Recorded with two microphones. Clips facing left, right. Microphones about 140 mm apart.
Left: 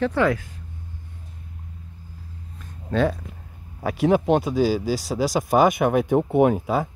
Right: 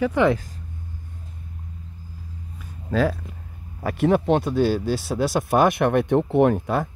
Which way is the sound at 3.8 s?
Centre (ahead or behind).